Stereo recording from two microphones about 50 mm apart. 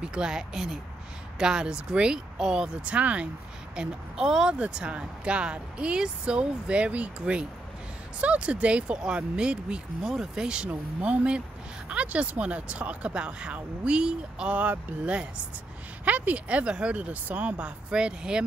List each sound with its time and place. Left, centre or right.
0.0 s speech: centre
10.0 s speech: centre
14.6 s speech: right